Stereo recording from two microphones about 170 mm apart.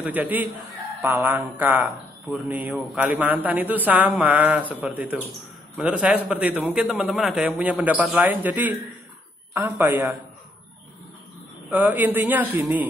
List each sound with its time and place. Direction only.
0.0 s a man's voice: 10° right (ahead or behind)
5.8 s a man's voice: 5° right (ahead or behind)
11.7 s a man's voice: 10° right (ahead or behind)